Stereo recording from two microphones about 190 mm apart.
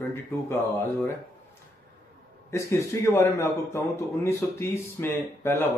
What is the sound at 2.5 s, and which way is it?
A man's voice, 15° left (ahead or behind).